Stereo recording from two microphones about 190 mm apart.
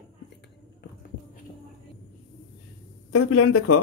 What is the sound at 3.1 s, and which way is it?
Speech, 90° left.